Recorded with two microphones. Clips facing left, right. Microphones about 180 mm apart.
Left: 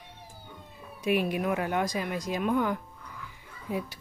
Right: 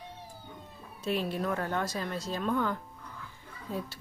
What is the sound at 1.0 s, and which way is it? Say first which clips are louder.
Speech: left 4 dB; 15° left (ahead or behind).